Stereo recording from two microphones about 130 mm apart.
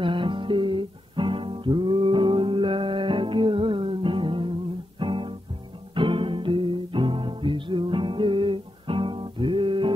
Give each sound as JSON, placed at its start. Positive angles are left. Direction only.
{"t": 0.0, "sound": "music", "side_deg": -40}